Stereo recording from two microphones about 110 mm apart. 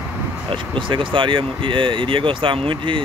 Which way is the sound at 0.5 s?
50° right (ahead or behind).